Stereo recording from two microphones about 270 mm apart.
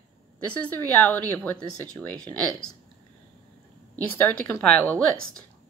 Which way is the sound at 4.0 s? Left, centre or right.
Centre.